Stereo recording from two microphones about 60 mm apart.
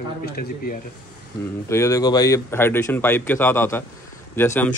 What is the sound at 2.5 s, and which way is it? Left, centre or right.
A man's voice, left.